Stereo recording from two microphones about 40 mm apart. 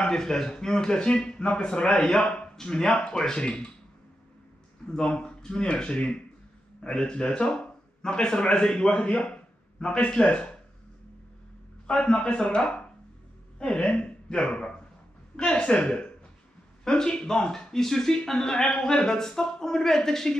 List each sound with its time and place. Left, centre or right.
0.0 s a man's voice: centre
4.8 s a man's voice: left
12.0 s a man's voice: left; by 20.3 s centre